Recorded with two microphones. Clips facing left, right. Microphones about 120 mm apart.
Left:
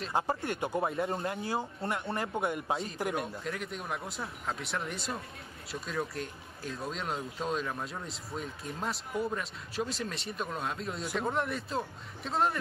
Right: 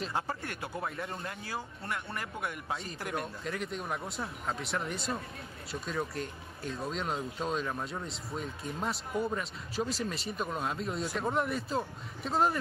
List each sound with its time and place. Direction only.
0.1 s speech: 25° left (ahead or behind)
3.4 s speech: centre (ahead or behind)